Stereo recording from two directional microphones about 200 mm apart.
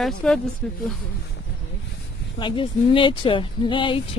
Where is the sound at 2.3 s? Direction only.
25° left (ahead or behind).